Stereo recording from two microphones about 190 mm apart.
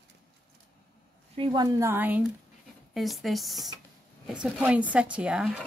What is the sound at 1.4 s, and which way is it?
Speech, 30° right (ahead or behind).